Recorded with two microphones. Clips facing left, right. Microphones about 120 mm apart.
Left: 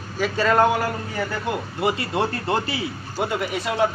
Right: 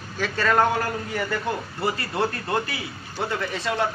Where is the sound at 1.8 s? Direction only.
20° left (ahead or behind).